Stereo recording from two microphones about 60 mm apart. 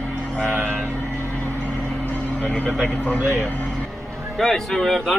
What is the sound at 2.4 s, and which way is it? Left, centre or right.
Speech, centre.